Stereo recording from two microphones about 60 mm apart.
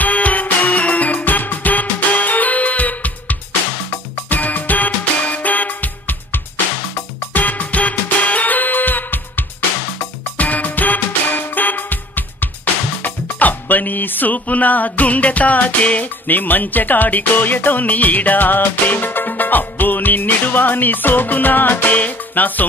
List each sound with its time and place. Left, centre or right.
0.0 s music: left